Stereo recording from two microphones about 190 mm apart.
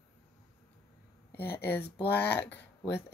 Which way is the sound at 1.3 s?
10° left (ahead or behind).